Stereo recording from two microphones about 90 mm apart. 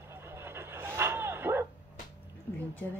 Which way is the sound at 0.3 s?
30° right (ahead or behind).